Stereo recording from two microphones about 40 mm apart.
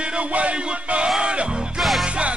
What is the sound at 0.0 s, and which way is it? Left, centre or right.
Music, right.